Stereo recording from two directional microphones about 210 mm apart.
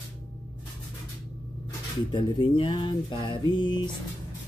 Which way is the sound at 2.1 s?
25° left (ahead or behind).